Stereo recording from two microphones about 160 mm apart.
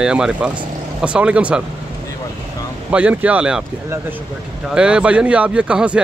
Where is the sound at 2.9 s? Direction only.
10° right (ahead or behind).